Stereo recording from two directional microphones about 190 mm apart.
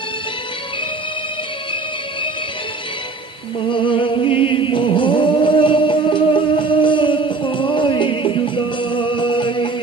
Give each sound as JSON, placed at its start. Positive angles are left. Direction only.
{"t": 3.6, "sound": "music", "side_deg": 25}